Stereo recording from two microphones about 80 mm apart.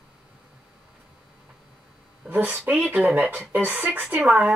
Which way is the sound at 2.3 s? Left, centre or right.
Centre.